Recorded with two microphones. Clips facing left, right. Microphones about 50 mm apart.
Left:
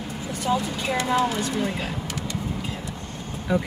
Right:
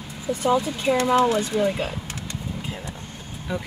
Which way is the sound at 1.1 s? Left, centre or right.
Right.